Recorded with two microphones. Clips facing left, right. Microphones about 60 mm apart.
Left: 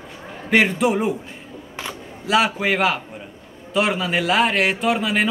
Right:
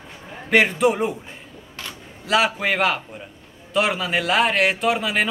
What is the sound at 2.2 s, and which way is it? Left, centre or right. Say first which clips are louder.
A man's voice: left 1 dB; centre.